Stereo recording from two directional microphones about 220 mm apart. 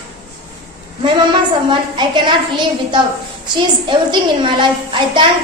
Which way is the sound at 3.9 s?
20° right (ahead or behind).